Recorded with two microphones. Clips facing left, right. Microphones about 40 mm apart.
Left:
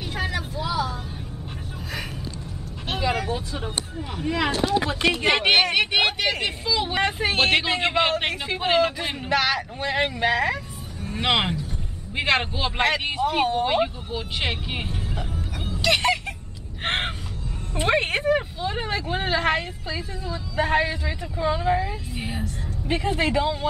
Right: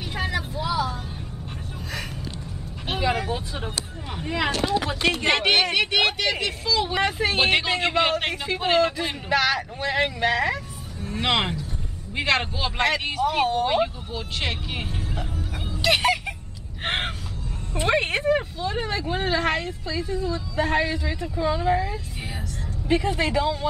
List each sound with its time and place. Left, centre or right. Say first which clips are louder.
0.1 s vehicle: right 1 dB; centre
2.9 s vehicle: even; centre
4.1 s speech: left 1 dB; centre
5.2 s speech: left 2 dB; centre
14.9 s music: even; centre
15.8 s fowl: even; centre
16.8 s speech: left 1 dB; centre
22.2 s vehicle: left 4 dB; left
22.8 s speech: right 1 dB; centre